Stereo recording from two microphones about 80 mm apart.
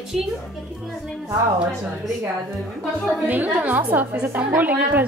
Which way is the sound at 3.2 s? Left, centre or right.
Centre.